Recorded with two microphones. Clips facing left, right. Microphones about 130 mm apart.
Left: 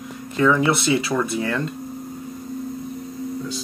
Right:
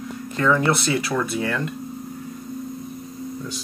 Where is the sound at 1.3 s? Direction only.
20° left (ahead or behind).